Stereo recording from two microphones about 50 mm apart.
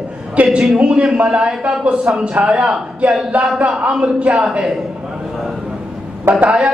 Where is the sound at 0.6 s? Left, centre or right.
Centre.